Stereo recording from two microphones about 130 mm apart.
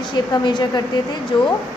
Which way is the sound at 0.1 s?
35° left (ahead or behind).